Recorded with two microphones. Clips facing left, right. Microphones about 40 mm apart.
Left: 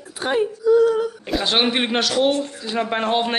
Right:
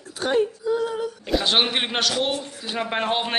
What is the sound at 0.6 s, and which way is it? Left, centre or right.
Female singing, centre.